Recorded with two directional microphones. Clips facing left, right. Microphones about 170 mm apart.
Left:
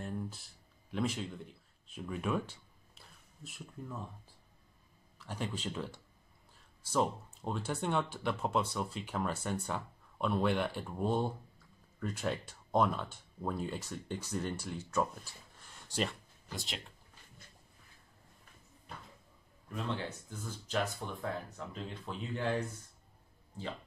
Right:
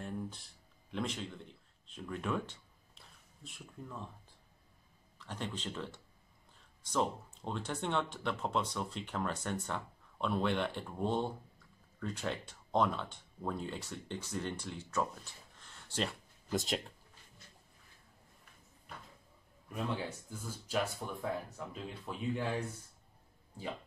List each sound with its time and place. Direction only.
0.0 s a sound: 5° left (ahead or behind)
0.9 s speech: 10° left (ahead or behind)
5.2 s speech: 10° left (ahead or behind)
16.5 s speech: 45° right (ahead or behind)
19.7 s speech: 10° right (ahead or behind)